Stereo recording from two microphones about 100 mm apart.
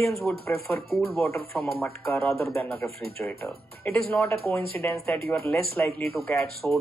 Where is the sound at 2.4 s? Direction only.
25° left (ahead or behind).